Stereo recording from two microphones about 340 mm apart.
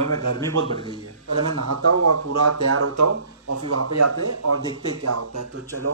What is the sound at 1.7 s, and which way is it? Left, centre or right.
Speech, right.